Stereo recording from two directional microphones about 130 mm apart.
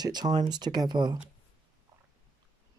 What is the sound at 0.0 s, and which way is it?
Speech, 30° right (ahead or behind).